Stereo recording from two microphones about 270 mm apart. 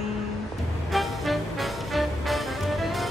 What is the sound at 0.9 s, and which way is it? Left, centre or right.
Music, centre.